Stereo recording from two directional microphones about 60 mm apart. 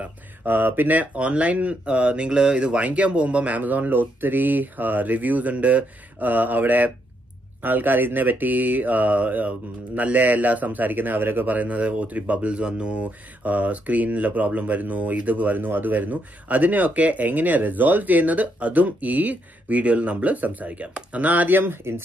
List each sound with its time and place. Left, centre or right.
0.5 s speech: right